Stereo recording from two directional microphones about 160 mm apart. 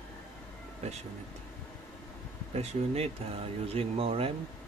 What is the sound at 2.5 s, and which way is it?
Speech, 40° right (ahead or behind).